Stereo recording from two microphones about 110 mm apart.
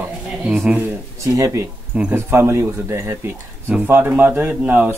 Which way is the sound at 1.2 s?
30° right (ahead or behind).